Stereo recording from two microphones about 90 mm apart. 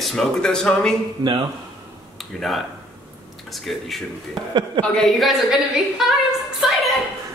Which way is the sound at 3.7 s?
Centre (ahead or behind).